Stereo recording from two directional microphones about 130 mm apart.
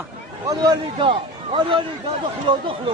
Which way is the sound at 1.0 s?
40° right (ahead or behind).